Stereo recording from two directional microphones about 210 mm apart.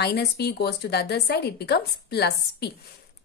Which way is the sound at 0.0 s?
50° left (ahead or behind).